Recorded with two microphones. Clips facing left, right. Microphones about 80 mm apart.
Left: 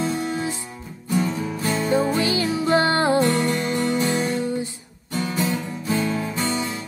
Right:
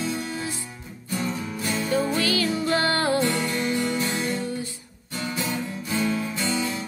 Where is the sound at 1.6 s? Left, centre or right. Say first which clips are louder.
Left 4 dB; left.